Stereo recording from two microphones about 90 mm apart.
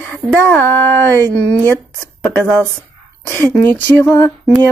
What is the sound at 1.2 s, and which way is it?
Speech, 40° right (ahead or behind).